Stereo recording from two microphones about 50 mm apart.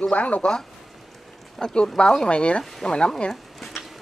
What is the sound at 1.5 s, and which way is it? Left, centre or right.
Speech, centre.